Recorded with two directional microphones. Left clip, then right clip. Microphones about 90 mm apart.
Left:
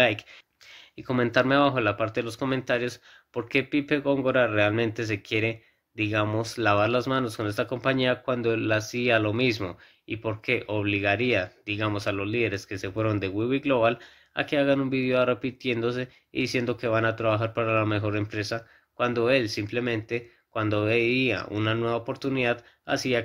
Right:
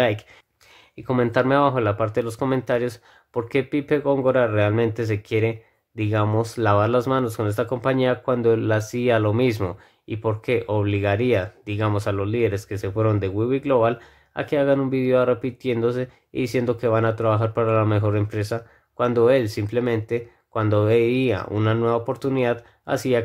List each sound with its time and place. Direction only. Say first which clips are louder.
1.0 s speech: right 3 dB; 25° right (ahead or behind); by 8.7 s 40° right (ahead or behind)
8.7 s speech: right 3 dB; 50° right (ahead or behind)
9.0 s speech: right 4 dB; 40° right (ahead or behind)
12.8 s speech: right 5 dB; 35° right (ahead or behind)
13.9 s speech: right 1 dB; 40° right (ahead or behind)
22.6 s speech: right 3 dB; 50° right (ahead or behind)